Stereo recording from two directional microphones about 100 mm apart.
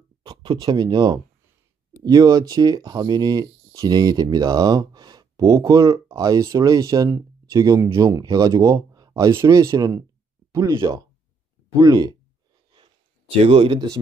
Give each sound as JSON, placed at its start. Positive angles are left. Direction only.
{"t": 0.2, "sound": "speech", "side_deg": -50}
{"t": 9.3, "sound": "speech", "side_deg": -30}
{"t": 13.3, "sound": "speech", "side_deg": -70}